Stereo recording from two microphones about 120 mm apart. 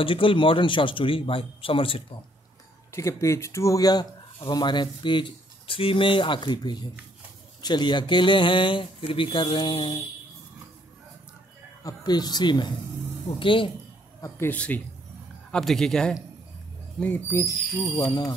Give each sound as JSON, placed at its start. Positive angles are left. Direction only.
{"t": 0.0, "sound": "speech", "side_deg": 45}
{"t": 2.9, "sound": "speech", "side_deg": 25}
{"t": 11.8, "sound": "speech", "side_deg": 35}
{"t": 14.2, "sound": "speech", "side_deg": 20}
{"t": 15.5, "sound": "speech", "side_deg": 5}
{"t": 17.0, "sound": "speech", "side_deg": 20}
{"t": 17.8, "sound": "speech", "side_deg": 35}